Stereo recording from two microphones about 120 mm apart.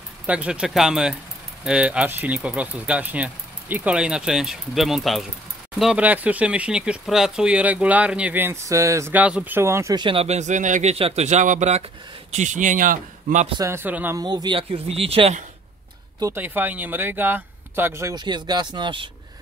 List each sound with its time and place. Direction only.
0.3 s speech: 10° right (ahead or behind); by 9.1 s 25° right (ahead or behind)
9.1 s speech: 10° right (ahead or behind)
9.9 s speech: 45° right (ahead or behind)
10.2 s a man's voice: 75° right (ahead or behind); by 13.5 s 90° right
13.6 s speech: 20° right (ahead or behind)
14.1 s speech: 35° right (ahead or behind)
14.6 s speech: 50° right (ahead or behind)
16.3 s speech: 15° right (ahead or behind)
18.1 s speech: 35° right (ahead or behind)